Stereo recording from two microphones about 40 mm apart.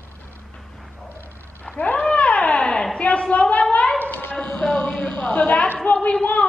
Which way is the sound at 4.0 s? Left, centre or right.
Left.